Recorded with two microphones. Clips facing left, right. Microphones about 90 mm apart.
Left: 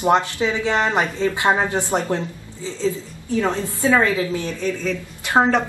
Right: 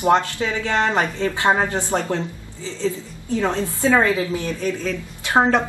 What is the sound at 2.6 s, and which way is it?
Speech, 15° left (ahead or behind).